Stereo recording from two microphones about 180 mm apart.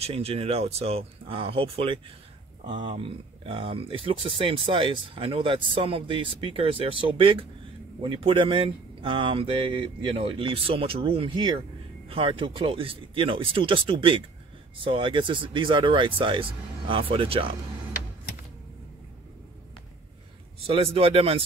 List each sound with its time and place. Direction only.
0.0 s speech: 35° right (ahead or behind)
20.6 s speech: 30° right (ahead or behind)